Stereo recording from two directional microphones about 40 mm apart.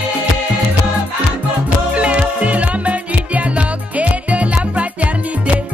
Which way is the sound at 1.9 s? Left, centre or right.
Right.